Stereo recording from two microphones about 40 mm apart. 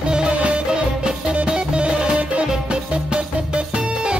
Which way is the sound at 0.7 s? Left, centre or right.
Right.